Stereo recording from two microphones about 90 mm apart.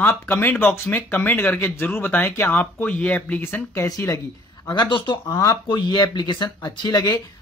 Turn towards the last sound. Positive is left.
turn(degrees=50)  # may be behind; listen again after turning